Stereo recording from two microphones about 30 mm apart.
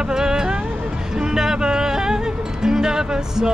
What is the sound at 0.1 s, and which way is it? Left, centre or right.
Vehicle, right.